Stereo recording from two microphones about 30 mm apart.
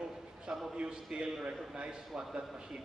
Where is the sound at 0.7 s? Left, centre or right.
Right.